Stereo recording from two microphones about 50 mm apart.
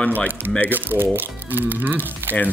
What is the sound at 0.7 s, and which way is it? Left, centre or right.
Speech, right.